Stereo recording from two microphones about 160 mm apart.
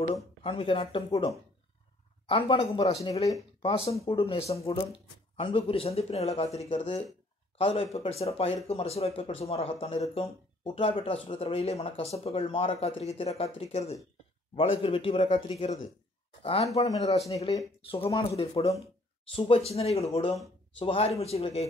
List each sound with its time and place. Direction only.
0.4 s speech: 35° left (ahead or behind)